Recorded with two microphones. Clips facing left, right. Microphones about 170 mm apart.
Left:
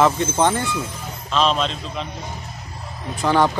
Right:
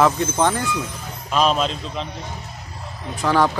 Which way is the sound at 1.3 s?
10° right (ahead or behind).